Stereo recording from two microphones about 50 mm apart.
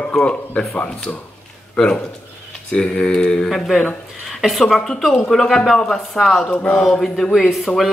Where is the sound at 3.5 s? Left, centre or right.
Centre.